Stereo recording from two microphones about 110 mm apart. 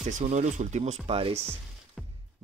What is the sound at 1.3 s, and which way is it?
Speech, 20° right (ahead or behind).